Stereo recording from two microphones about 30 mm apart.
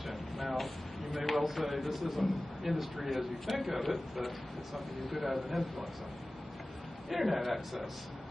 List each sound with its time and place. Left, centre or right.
0.0 s a sound: centre
1.4 s a man's voice: centre
7.1 s a man's voice: centre